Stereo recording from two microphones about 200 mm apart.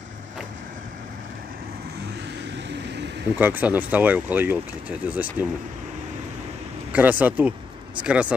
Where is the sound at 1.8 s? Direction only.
55° right (ahead or behind).